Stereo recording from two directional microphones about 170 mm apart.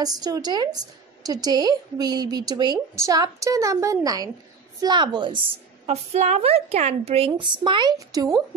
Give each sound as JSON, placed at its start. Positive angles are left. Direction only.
{"t": 0.0, "sound": "speech", "side_deg": -20}
{"t": 5.9, "sound": "a woman's voice", "side_deg": -40}